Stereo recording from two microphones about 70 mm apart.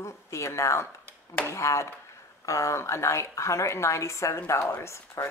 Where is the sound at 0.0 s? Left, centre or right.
Left.